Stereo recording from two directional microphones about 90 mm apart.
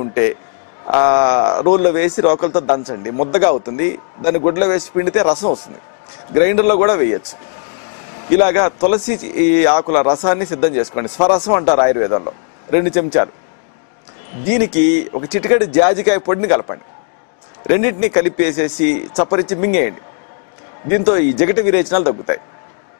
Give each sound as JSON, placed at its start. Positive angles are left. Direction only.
{"t": 0.0, "sound": "a man's voice", "side_deg": 20}
{"t": 8.3, "sound": "a man's voice", "side_deg": 15}
{"t": 14.5, "sound": "a man's voice", "side_deg": 15}